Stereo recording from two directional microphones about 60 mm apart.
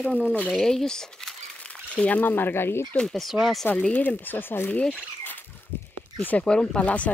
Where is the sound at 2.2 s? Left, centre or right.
Left.